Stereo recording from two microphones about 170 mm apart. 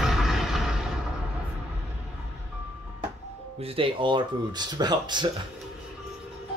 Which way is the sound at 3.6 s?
35° right (ahead or behind).